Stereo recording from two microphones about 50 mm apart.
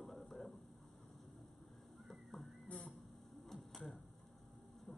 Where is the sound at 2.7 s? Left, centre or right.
Left.